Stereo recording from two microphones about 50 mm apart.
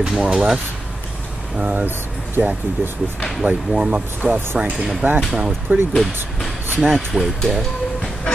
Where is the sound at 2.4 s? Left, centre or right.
Right.